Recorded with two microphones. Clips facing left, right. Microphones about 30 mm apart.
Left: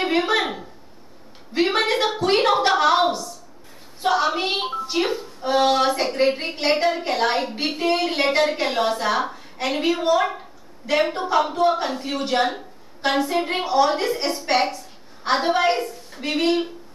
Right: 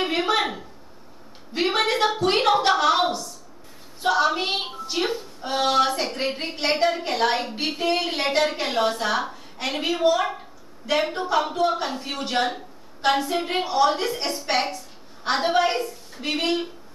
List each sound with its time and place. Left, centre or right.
0.4 s a woman's voice: centre
1.5 s a woman's voice: centre
4.0 s a woman's voice: centre
16.3 s speech: centre